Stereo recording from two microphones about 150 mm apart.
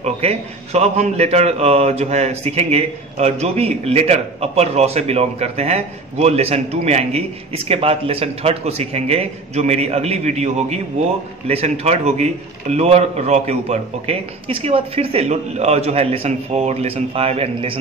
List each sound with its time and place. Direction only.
0.0 s a man's voice: 45° right (ahead or behind)